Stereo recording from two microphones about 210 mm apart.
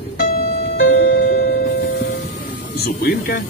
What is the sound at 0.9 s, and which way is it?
Music, 60° left (ahead or behind).